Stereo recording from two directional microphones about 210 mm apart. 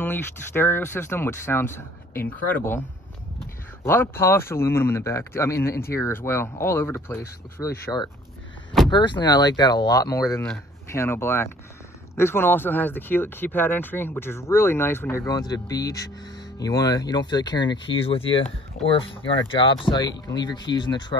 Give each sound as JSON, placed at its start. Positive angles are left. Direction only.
{"t": 0.0, "sound": "speech", "side_deg": 10}
{"t": 3.8, "sound": "speech", "side_deg": 10}